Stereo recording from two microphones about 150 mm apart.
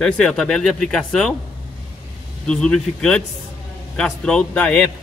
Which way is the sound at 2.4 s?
5° left (ahead or behind).